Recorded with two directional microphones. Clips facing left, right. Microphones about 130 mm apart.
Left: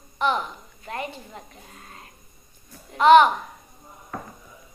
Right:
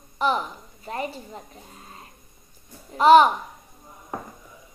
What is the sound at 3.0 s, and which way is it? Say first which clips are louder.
Speech: even; 35° right (ahead or behind).